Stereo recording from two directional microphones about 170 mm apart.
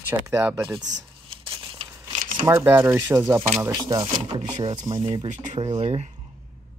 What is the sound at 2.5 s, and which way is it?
Speech, 15° right (ahead or behind).